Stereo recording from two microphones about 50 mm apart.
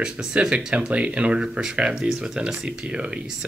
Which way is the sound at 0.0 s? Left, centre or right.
Centre.